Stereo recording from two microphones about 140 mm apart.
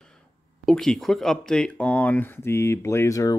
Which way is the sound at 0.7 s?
5° left (ahead or behind).